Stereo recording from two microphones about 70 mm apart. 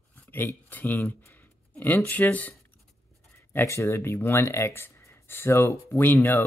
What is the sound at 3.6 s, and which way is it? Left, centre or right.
Speech, left.